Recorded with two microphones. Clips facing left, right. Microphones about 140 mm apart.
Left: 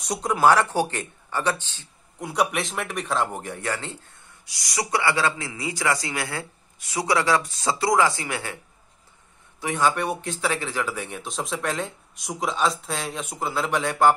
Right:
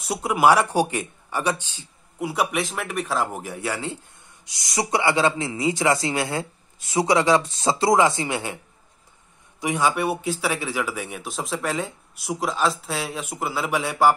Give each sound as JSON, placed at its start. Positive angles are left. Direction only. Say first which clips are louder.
{"t": 0.0, "sound": "speech", "louder": "right 1 dB", "side_deg": -5}
{"t": 4.5, "sound": "a man's voice", "louder": "right 2 dB", "side_deg": -25}
{"t": 9.6, "sound": "speech", "louder": "right 1 dB", "side_deg": -10}